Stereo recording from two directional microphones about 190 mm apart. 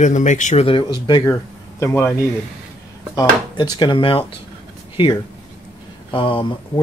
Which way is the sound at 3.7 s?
25° left (ahead or behind).